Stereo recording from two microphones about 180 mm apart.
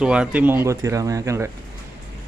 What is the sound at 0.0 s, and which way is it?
Speech, 5° right (ahead or behind).